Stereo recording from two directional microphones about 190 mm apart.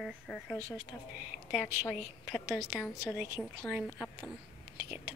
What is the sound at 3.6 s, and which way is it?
Speech, centre (ahead or behind).